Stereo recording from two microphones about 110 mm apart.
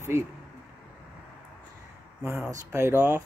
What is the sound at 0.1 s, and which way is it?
Speech, 25° right (ahead or behind).